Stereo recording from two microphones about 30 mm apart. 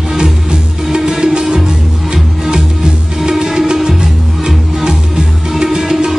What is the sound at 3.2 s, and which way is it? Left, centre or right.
Music, right.